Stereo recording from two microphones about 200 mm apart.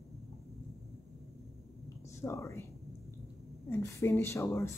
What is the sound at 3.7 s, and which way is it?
Speech, 10° left (ahead or behind).